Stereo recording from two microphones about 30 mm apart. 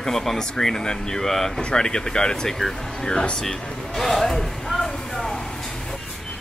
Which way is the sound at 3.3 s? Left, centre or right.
Centre.